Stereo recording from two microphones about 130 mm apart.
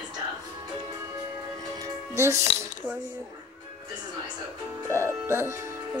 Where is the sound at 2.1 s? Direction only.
20° right (ahead or behind).